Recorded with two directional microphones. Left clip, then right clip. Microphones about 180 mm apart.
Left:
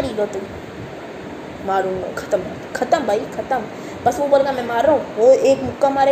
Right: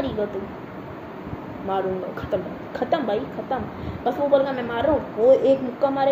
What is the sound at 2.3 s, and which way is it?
Speech, 5° left (ahead or behind).